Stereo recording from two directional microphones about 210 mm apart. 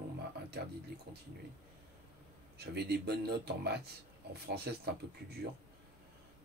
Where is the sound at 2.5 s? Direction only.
50° right (ahead or behind).